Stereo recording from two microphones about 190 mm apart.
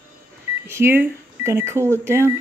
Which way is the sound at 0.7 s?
10° right (ahead or behind).